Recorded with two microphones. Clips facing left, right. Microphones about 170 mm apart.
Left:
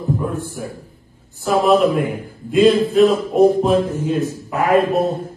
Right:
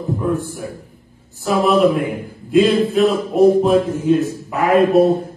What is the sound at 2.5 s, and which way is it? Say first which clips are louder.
A man's voice: left 1 dB; centre (ahead or behind).